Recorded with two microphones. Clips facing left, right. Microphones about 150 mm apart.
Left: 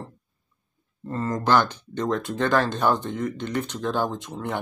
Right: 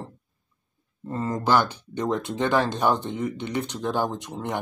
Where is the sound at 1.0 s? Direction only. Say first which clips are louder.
Left 1 dB; 15° right (ahead or behind).